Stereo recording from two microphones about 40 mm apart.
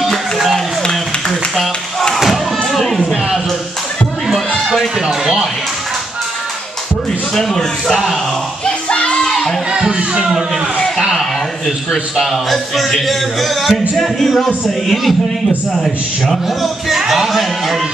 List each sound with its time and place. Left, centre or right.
2.1 s crowd: centre
5.2 s speech: centre
7.3 s speech: centre
8.6 s music: left
9.2 s crowd: centre
9.7 s a sound: right
11.1 s a man's voice: centre
17.1 s a sound: centre